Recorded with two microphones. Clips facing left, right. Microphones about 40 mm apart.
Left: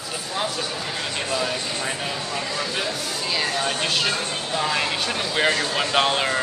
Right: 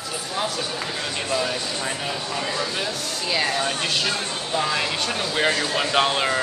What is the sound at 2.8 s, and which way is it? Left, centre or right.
Speech, centre.